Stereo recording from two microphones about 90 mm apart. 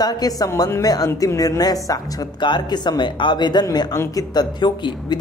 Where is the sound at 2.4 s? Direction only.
55° left (ahead or behind).